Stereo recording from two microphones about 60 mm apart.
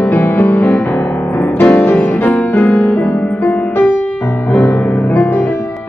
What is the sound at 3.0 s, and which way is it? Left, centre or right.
Music, left.